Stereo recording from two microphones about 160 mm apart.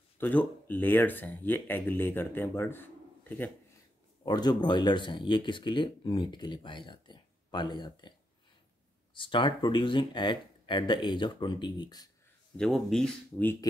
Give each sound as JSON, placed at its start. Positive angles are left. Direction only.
{"t": 0.2, "sound": "speech", "side_deg": 10}
{"t": 4.2, "sound": "speech", "side_deg": 25}
{"t": 9.1, "sound": "speech", "side_deg": 30}
{"t": 12.5, "sound": "speech", "side_deg": 0}